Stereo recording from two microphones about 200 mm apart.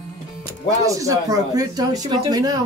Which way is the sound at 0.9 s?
15° right (ahead or behind).